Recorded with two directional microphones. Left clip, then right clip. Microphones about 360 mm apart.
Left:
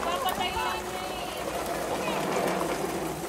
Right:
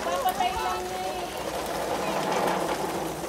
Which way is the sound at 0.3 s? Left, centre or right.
Right.